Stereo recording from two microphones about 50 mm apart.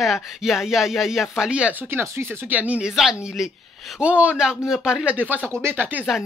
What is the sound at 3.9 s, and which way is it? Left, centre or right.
Speech, right.